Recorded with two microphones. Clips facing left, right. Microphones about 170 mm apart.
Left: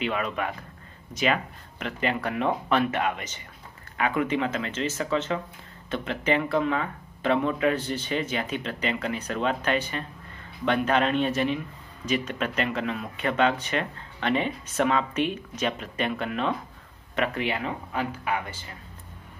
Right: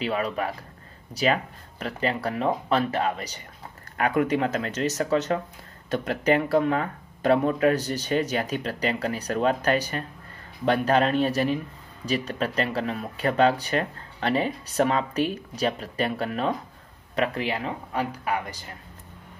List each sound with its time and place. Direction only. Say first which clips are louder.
0.0 s speech: right 2 dB; 35° right (ahead or behind)